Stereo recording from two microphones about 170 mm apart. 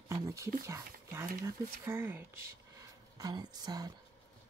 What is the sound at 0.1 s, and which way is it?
Speech, 20° right (ahead or behind).